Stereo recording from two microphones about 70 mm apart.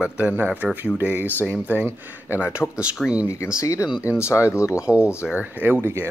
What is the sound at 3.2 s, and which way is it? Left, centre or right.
Speech, left.